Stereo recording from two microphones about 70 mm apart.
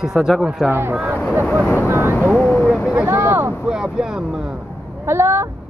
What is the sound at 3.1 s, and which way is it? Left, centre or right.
Speech, right.